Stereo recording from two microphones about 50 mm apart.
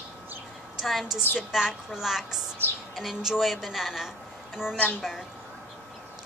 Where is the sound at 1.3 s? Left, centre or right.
Centre.